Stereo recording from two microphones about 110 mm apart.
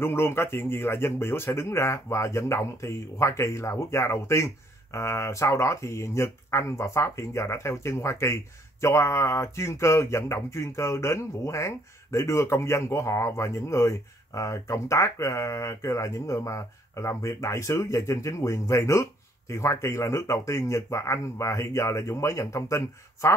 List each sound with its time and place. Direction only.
0.0 s speech: 20° left (ahead or behind)